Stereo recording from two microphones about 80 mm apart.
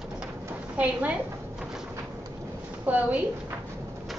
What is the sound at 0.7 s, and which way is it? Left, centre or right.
Speech, centre.